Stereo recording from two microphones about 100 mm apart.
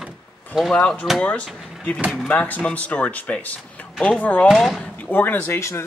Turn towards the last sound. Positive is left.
turn(degrees=25)  # may be behind; listen again after turning